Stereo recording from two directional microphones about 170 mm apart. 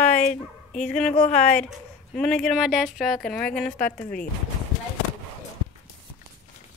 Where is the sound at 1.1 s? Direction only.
40° left (ahead or behind).